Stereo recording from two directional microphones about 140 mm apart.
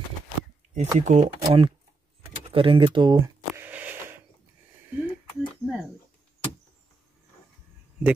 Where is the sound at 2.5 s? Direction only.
40° right (ahead or behind).